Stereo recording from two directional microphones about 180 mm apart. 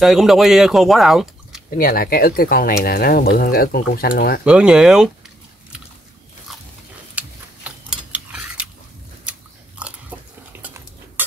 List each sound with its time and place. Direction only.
0.0 s speech: centre (ahead or behind)
1.7 s speech: 55° left (ahead or behind)
4.5 s speech: 5° right (ahead or behind)
7.2 s a sound: 10° right (ahead or behind)
9.8 s biting: 10° right (ahead or behind)